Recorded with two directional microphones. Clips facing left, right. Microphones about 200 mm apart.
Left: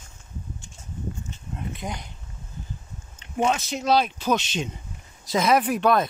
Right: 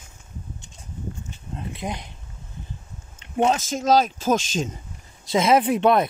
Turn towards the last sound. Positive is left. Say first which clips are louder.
# right 3 dB
turn(degrees=-25)  # may be behind; listen again after turning